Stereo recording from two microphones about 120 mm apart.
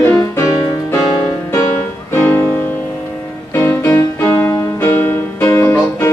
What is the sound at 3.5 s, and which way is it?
Music, 20° left (ahead or behind).